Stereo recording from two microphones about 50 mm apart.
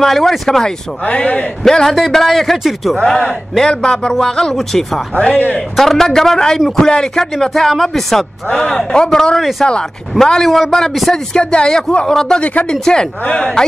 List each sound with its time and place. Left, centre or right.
0.0 s speech: centre
1.0 s speech: left
1.6 s a man's voice: centre
3.7 s speech: centre
5.1 s speech: left
5.8 s speech: centre
9.4 s a man's voice: centre
10.1 s a man's voice: centre
11.3 s speech: centre
12.4 s speech: left
12.8 s speech: centre